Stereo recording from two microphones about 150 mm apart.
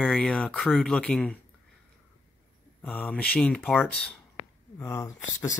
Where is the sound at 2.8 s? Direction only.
10° left (ahead or behind).